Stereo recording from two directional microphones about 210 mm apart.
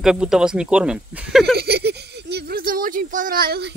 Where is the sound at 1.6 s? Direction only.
50° right (ahead or behind).